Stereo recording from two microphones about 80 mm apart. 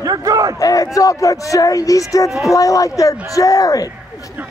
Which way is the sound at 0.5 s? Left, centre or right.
Left.